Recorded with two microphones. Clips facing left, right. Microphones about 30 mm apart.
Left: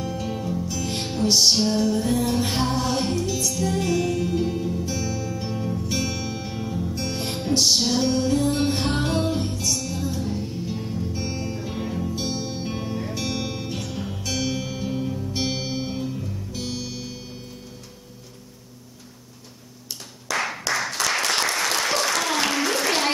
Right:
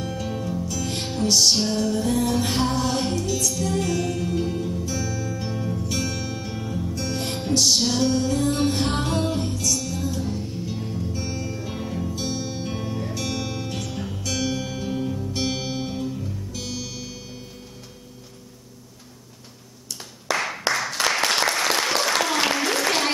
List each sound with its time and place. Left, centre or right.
0.1 s music: centre
7.2 s music: centre
9.8 s music: centre
11.6 s music: centre
12.2 s music: centre
20.3 s clapping: centre
20.7 s applause: centre
21.5 s applause: centre